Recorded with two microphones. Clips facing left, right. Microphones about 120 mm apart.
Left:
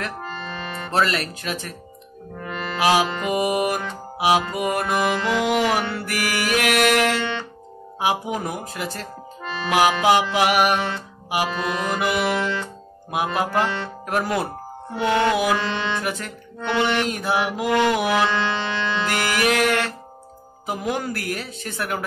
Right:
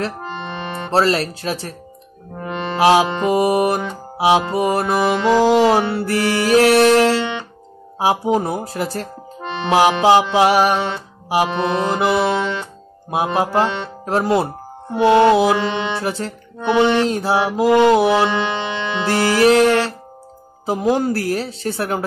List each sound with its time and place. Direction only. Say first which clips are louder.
0.0 s music: right 5 dB; 25° right (ahead or behind)
2.3 s music: right 6 dB; 25° right (ahead or behind)
4.2 s mantra: right 5 dB; 30° right (ahead or behind)
8.0 s a woman's voice: right 6 dB; 35° right (ahead or behind)
9.4 s mantra: right 4 dB; 25° right (ahead or behind)
16.0 s a woman's voice: right 5 dB; 30° right (ahead or behind)
16.5 s mantra: right 7 dB; 20° right (ahead or behind)
20.6 s a woman's voice: right 8 dB; 30° right (ahead or behind)